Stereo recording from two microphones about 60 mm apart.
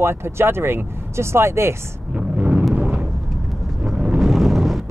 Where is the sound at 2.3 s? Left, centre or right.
Right.